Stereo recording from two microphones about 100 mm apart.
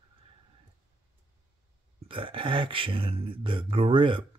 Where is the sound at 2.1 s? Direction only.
60° right (ahead or behind).